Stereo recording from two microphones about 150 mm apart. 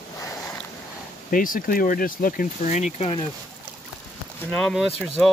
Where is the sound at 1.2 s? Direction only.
65° left (ahead or behind); by 3.1 s 50° left (ahead or behind).